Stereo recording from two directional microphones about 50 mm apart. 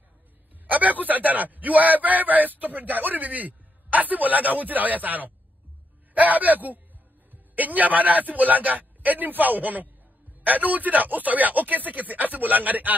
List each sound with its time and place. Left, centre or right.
0.7 s a man's voice: right